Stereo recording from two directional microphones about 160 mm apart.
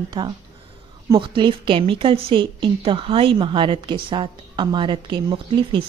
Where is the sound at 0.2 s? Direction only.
25° right (ahead or behind).